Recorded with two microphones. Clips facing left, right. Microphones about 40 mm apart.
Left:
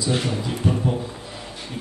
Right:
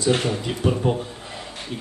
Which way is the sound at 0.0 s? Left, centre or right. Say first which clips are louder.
Right 3 dB; right.